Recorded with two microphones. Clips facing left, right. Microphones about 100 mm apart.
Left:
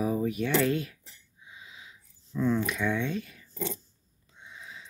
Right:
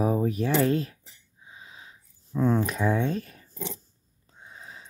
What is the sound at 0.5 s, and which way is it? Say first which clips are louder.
Speech: right 3 dB; 35° right (ahead or behind).